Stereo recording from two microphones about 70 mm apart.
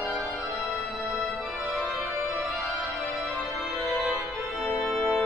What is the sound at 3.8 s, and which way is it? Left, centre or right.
Organ, centre.